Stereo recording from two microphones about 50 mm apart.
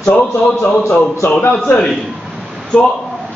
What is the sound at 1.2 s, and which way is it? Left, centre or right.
Speech, left.